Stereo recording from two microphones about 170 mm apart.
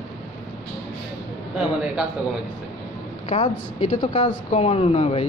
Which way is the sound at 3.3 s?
40° left (ahead or behind).